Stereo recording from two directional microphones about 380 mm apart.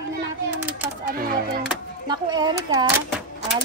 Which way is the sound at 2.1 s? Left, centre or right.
Centre.